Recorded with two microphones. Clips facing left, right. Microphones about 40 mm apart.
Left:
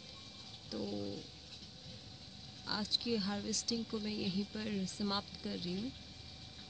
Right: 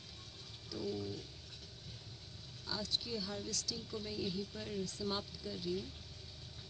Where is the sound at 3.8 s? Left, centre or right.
Left.